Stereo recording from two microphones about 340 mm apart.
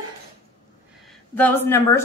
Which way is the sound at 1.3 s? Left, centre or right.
Centre.